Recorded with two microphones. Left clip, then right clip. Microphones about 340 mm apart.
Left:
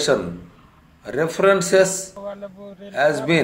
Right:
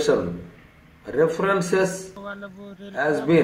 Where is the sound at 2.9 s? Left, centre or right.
Left.